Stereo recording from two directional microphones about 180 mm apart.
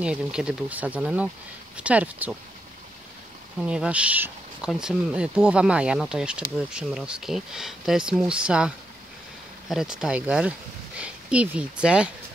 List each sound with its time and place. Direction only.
0.0 s speech: 5° right (ahead or behind)
3.6 s speech: 5° right (ahead or behind)